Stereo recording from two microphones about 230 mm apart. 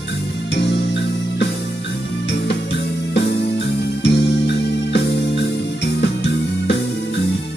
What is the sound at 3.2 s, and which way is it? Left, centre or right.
Music, left.